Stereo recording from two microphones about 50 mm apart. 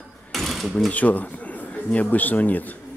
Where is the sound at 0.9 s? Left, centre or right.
Left.